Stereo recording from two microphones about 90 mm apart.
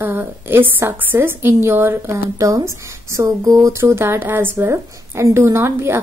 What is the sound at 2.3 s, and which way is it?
Speech, 35° right (ahead or behind).